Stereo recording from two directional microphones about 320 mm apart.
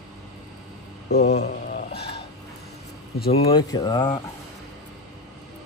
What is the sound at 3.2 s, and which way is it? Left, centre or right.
Speech, centre.